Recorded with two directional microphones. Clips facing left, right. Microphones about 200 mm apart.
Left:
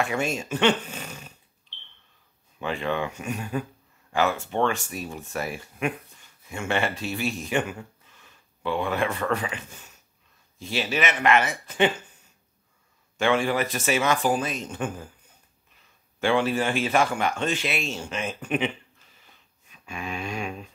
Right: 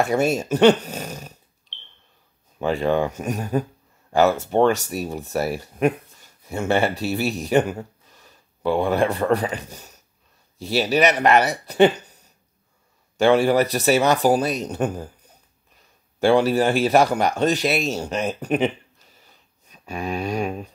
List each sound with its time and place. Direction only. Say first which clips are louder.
0.0 s speech: right 7 dB; 40° right (ahead or behind)
2.6 s speech: right 7 dB; 40° right (ahead or behind)